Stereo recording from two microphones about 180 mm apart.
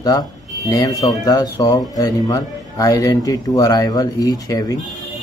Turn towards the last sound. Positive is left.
turn(degrees=20)  # may be behind; listen again after turning